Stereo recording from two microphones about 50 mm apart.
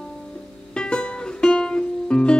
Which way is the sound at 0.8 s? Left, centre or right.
Centre.